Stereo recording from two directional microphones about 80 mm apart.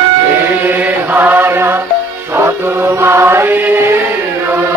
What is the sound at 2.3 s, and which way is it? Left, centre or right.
Chant, right.